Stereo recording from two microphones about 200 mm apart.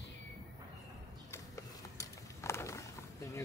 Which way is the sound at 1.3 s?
15° left (ahead or behind).